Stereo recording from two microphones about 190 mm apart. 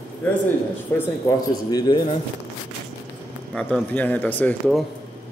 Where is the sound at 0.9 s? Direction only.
20° left (ahead or behind).